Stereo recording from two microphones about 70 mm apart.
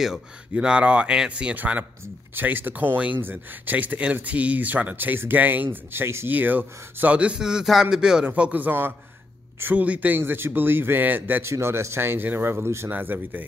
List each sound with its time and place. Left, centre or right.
0.0 s a man's voice: centre
8.3 s speech: right
11.4 s speech: right
12.9 s speech: right